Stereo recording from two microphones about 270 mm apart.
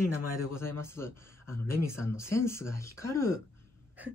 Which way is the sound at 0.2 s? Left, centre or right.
Left.